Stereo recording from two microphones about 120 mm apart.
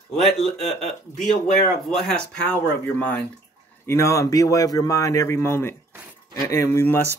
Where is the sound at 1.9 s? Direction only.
5° left (ahead or behind).